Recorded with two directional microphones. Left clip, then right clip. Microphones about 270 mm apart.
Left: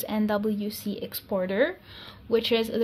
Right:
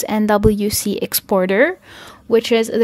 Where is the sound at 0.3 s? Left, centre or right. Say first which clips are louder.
Right 16 dB; right.